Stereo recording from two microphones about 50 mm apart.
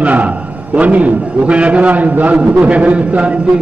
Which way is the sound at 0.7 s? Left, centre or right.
Right.